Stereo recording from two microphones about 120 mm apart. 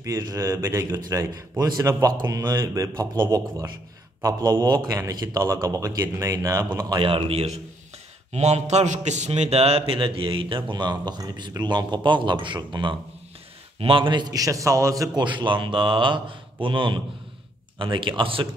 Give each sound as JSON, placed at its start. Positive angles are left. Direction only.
{"t": 0.0, "sound": "speech", "side_deg": -25}
{"t": 1.6, "sound": "a man's voice", "side_deg": -30}
{"t": 7.0, "sound": "a man's voice", "side_deg": -45}
{"t": 15.2, "sound": "a man's voice", "side_deg": -40}